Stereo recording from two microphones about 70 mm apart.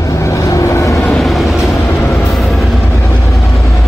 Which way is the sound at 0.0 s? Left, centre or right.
Left.